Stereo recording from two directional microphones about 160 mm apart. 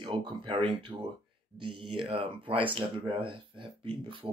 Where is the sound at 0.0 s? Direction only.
30° right (ahead or behind).